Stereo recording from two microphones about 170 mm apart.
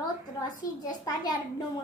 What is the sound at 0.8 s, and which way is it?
Speech, 25° left (ahead or behind).